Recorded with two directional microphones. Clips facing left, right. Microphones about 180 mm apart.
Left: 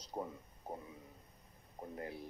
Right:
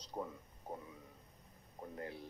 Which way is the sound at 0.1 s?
20° left (ahead or behind).